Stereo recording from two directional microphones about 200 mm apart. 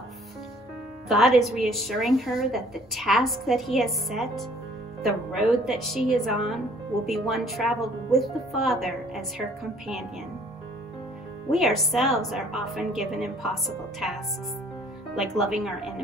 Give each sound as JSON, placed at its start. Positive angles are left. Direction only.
{"t": 1.0, "sound": "speech", "side_deg": 0}
{"t": 11.5, "sound": "speech", "side_deg": 0}